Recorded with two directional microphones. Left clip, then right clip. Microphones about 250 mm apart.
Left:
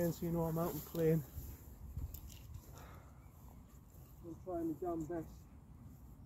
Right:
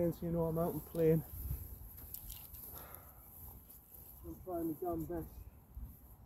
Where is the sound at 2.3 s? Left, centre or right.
Right.